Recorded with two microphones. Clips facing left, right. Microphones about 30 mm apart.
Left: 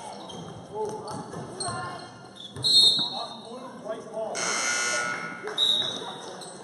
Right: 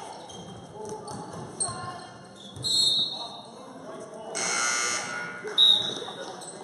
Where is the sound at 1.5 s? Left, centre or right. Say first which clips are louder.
Left 4 dB; centre.